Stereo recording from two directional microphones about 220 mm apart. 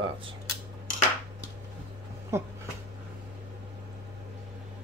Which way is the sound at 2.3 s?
10° right (ahead or behind).